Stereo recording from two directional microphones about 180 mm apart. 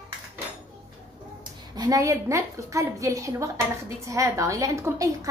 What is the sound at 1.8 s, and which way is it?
A woman's voice, 20° right (ahead or behind).